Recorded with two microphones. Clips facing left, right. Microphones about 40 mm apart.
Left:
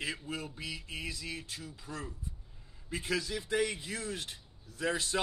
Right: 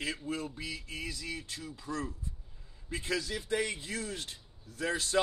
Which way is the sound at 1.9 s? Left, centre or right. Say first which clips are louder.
Right 6 dB; right.